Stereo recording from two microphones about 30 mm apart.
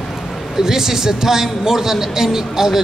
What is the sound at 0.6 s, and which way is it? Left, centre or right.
A man's voice, centre.